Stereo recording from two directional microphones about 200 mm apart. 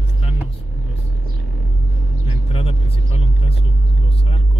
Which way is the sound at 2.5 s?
30° left (ahead or behind).